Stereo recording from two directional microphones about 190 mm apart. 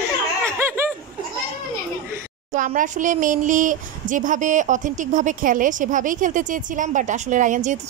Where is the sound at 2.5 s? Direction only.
40° right (ahead or behind).